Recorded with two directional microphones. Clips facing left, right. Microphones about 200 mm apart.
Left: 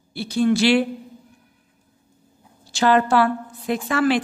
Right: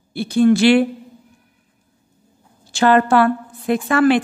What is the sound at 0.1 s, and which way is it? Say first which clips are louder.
Speech: right 5 dB; 55° right (ahead or behind).